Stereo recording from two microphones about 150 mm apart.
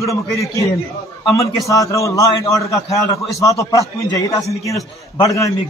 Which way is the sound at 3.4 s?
20° left (ahead or behind).